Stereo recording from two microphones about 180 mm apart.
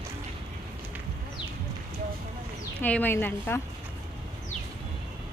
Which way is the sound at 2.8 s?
10° left (ahead or behind).